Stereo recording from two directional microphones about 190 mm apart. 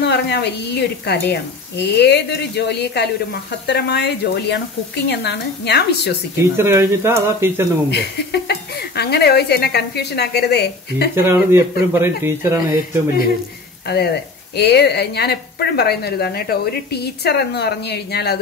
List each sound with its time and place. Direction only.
0.0 s a woman's voice: 60° left (ahead or behind)
6.5 s speech: 15° right (ahead or behind)
7.9 s a woman's voice: 60° left (ahead or behind)
11.1 s speech: 15° right (ahead or behind)
13.8 s a woman's voice: 60° left (ahead or behind)